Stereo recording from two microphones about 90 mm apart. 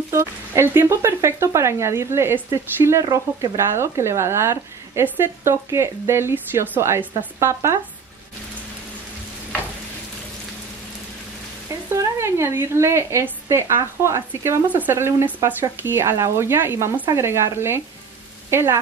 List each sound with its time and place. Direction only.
0.1 s a woman's voice: 30° right (ahead or behind)
11.9 s a woman's voice: 30° right (ahead or behind)